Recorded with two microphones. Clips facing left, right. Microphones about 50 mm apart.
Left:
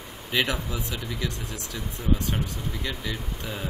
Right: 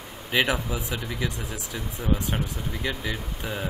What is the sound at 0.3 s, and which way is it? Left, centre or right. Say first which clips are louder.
Speech: right 2 dB; centre.